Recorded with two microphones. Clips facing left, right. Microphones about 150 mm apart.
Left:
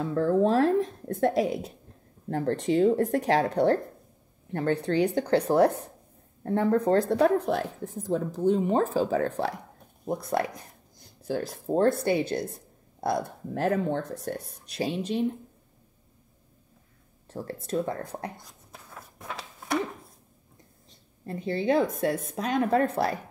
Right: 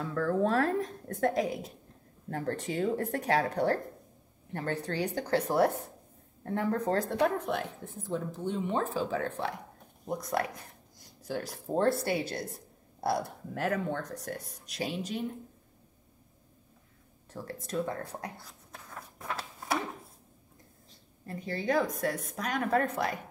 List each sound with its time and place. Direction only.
0.0 s speech: 25° left (ahead or behind)
17.3 s speech: 30° left (ahead or behind)
18.4 s a sound: 5° left (ahead or behind)
21.3 s speech: 25° left (ahead or behind)